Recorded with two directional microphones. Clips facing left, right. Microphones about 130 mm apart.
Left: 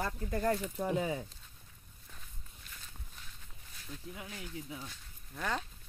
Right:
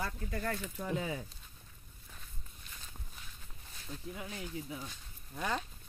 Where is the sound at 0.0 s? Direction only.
45° left (ahead or behind).